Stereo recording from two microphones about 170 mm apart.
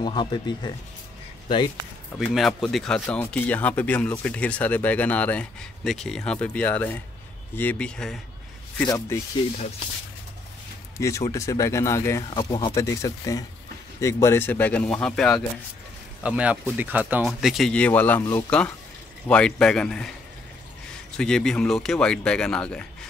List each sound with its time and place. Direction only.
0.0 s speech: 25° left (ahead or behind)
2.1 s speech: centre (ahead or behind)
8.8 s speech: 15° left (ahead or behind)
11.0 s speech: 20° left (ahead or behind)
12.3 s speech: 25° left (ahead or behind); by 15.4 s 5° left (ahead or behind)
16.2 s speech: 5° right (ahead or behind)
21.2 s speech: 5° left (ahead or behind)